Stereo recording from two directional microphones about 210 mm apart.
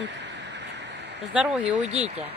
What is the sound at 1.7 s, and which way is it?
Speech, 30° right (ahead or behind).